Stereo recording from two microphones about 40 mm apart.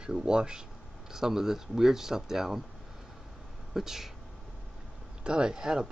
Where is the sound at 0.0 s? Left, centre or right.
Right.